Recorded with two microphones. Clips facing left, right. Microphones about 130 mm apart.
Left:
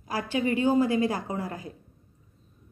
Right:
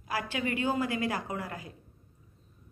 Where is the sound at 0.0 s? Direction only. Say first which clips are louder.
Left 5 dB; 35° left (ahead or behind).